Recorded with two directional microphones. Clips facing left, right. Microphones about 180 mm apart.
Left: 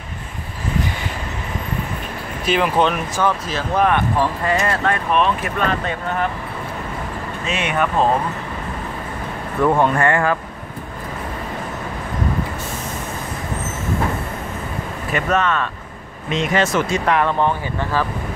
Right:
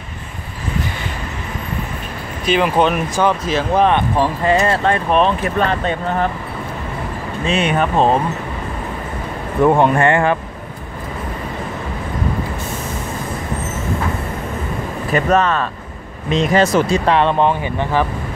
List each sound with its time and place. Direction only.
2.4 s speech: 5° left (ahead or behind)
2.8 s speech: 10° right (ahead or behind)
3.7 s speech: 25° right (ahead or behind)
7.4 s speech: 30° right (ahead or behind)
9.6 s speech: 20° right (ahead or behind)
15.1 s speech: 35° right (ahead or behind); by 18.0 s 20° right (ahead or behind)